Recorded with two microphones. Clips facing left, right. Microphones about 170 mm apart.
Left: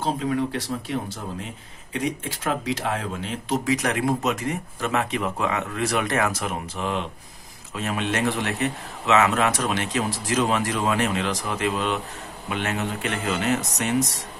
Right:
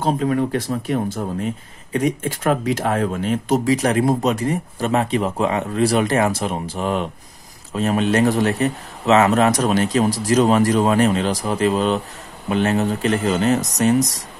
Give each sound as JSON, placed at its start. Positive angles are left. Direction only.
{"t": 0.0, "sound": "speech", "side_deg": -50}